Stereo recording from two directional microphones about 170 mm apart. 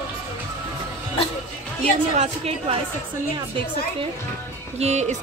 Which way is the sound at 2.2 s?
40° right (ahead or behind).